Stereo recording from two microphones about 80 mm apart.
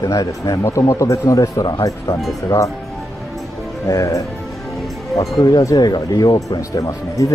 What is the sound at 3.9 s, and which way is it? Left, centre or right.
Speech, left.